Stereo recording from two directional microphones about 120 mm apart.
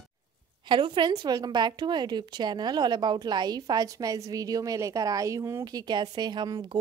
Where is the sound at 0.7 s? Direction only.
40° right (ahead or behind).